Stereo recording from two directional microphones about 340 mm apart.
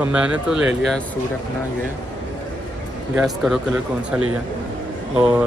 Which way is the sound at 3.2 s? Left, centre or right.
Centre.